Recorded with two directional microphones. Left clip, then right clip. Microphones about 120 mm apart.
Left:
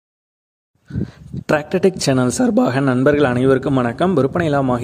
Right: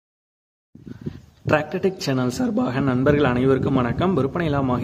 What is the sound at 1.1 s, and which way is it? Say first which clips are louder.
A man's voice: left 2 dB; 70° left (ahead or behind).